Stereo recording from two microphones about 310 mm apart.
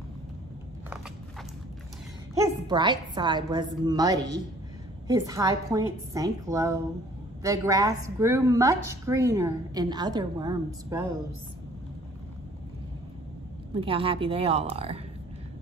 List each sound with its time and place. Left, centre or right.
2.3 s a woman's voice: centre
13.7 s a woman's voice: centre